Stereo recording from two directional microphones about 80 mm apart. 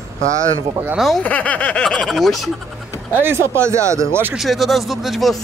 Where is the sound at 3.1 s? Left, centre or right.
Right.